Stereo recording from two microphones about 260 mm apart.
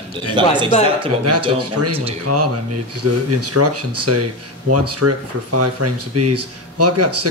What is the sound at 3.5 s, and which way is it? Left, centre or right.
Speech, right.